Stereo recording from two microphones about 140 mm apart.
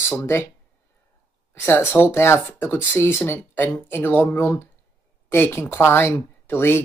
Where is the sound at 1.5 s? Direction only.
15° left (ahead or behind).